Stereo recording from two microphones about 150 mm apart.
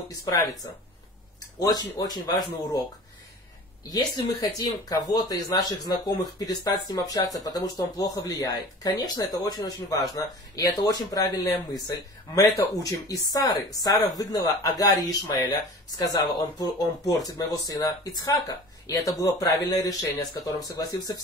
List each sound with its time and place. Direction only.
0.1 s speech: 25° left (ahead or behind)
3.9 s speech: 25° left (ahead or behind)
12.5 s speech: 20° left (ahead or behind)